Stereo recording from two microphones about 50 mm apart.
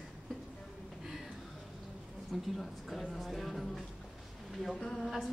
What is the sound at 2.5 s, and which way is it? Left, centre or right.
Speech, centre.